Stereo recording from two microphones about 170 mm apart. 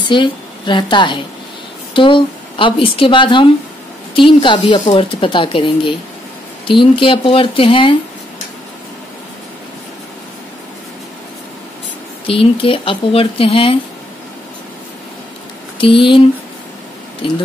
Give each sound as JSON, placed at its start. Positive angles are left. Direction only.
{"t": 0.1, "sound": "a woman's voice", "side_deg": 30}
{"t": 12.3, "sound": "speech", "side_deg": 30}
{"t": 15.8, "sound": "speech", "side_deg": 30}
{"t": 17.2, "sound": "speech", "side_deg": 30}